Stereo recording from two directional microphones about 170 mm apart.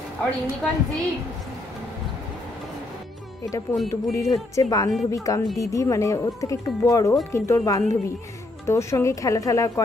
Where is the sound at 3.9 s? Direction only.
15° left (ahead or behind).